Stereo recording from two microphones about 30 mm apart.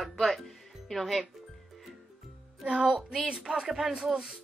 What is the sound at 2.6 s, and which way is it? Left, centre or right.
Speech, right.